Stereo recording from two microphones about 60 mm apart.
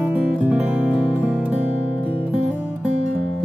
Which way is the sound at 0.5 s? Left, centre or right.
Right.